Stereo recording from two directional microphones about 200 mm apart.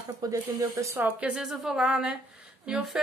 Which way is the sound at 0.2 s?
15° right (ahead or behind).